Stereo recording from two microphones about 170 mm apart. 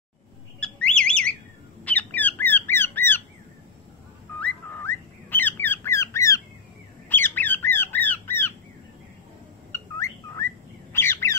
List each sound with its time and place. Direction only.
0.6 s bird: 5° left (ahead or behind)
4.4 s bird: 10° left (ahead or behind)
7.1 s squawk: 10° left (ahead or behind)
9.7 s bird: 15° left (ahead or behind)